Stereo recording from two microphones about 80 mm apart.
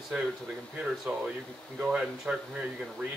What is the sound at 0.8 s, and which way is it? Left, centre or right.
Speech, centre.